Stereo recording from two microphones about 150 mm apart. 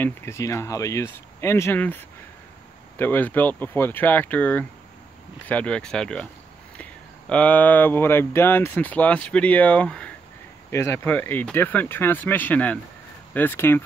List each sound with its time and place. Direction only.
0.0 s speech: 15° left (ahead or behind)
10.7 s speech: 20° left (ahead or behind)